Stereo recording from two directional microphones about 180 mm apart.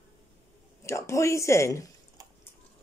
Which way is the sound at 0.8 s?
15° left (ahead or behind).